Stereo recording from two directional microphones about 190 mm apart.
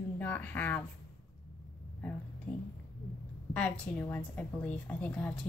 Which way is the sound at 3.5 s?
5° left (ahead or behind).